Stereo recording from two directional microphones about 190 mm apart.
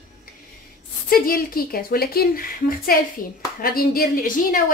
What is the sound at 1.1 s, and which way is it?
A woman's voice, 50° left (ahead or behind).